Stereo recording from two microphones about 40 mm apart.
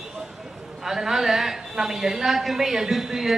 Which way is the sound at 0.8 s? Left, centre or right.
Centre.